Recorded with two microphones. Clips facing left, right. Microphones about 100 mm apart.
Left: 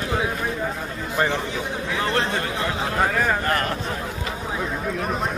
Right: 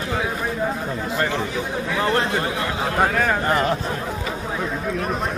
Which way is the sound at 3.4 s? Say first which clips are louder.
Right 4 dB; 15° right (ahead or behind).